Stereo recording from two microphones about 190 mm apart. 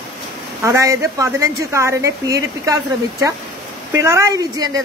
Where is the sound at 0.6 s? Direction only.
15° right (ahead or behind).